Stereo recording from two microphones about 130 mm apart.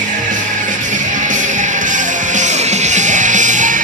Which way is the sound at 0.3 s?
80° right.